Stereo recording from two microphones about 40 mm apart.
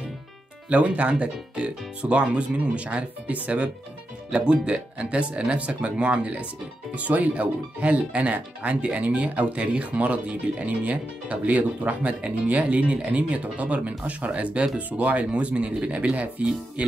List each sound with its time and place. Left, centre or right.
0.7 s speech: right
4.3 s speech: right
9.6 s speech: right